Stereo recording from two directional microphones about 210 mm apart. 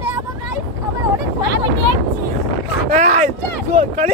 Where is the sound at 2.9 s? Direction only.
35° right (ahead or behind).